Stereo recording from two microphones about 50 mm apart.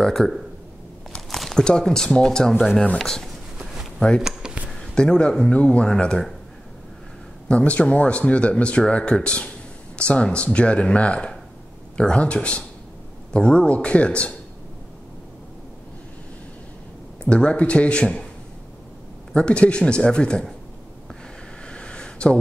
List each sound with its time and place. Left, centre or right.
0.0 s speech: centre
1.1 s a sound: centre
1.6 s speech: centre
3.5 s a sound: centre
4.7 s speech: centre
7.4 s speech: left
17.2 s speech: left
19.3 s speech: left
21.6 s a sound: left